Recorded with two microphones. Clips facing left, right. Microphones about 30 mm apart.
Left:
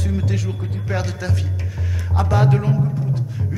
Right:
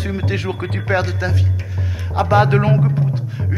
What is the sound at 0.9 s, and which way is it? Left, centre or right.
Speech, right.